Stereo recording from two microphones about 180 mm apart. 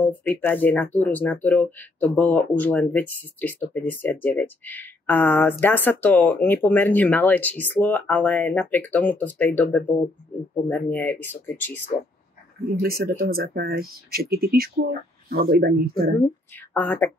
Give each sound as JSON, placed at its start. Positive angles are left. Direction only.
{"t": 0.0, "sound": "speech", "side_deg": 10}
{"t": 12.8, "sound": "speech", "side_deg": -55}
{"t": 16.7, "sound": "speech", "side_deg": 10}